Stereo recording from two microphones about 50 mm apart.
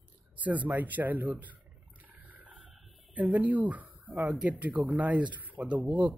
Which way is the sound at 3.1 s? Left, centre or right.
Right.